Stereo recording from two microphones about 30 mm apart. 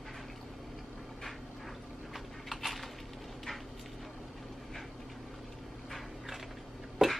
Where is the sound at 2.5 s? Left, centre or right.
Centre.